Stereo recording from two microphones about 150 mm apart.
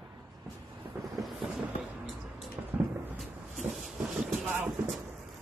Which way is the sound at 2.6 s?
15° right (ahead or behind).